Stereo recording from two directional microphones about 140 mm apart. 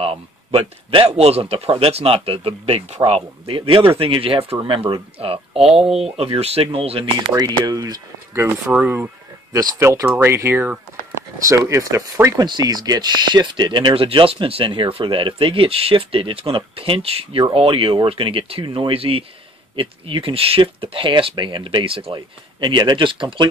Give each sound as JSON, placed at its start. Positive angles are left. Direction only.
{"t": 0.0, "sound": "speech", "side_deg": -45}
{"t": 5.9, "sound": "speech", "side_deg": -5}
{"t": 6.1, "sound": "speech", "side_deg": -45}
{"t": 8.7, "sound": "speech", "side_deg": -10}